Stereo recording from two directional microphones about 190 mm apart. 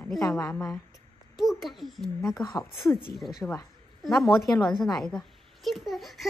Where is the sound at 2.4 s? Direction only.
20° left (ahead or behind).